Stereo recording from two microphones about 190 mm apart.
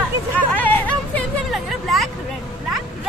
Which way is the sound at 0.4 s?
10° left (ahead or behind).